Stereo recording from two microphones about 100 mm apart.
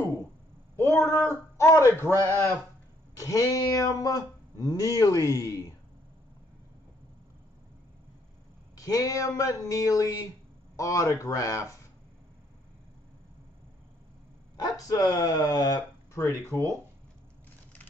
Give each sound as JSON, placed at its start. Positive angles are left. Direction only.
{"t": 1.0, "sound": "speech", "side_deg": 25}
{"t": 2.0, "sound": "a man's voice", "side_deg": -30}
{"t": 3.2, "sound": "speech", "side_deg": 30}
{"t": 8.7, "sound": "speech", "side_deg": 35}
{"t": 14.6, "sound": "speech", "side_deg": 35}
{"t": 16.2, "sound": "speech", "side_deg": 25}